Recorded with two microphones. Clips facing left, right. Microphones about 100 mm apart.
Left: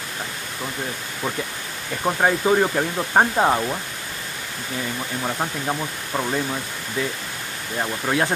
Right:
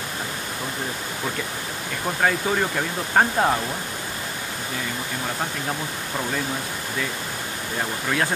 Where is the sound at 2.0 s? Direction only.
20° left (ahead or behind).